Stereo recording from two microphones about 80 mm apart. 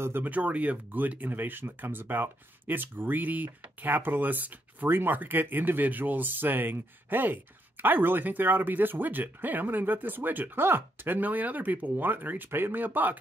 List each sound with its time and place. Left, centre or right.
0.0 s speech: right